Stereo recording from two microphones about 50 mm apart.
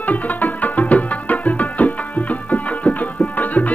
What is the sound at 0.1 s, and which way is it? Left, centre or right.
Music, left.